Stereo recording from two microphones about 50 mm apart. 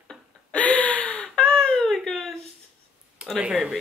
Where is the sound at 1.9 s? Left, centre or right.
Centre.